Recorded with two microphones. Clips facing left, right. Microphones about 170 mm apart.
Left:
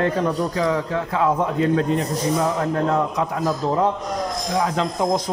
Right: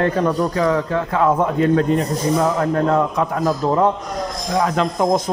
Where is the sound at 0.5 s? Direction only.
60° right (ahead or behind).